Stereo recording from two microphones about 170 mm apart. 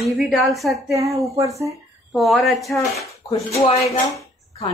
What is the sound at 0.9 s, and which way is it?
Speech, 20° right (ahead or behind).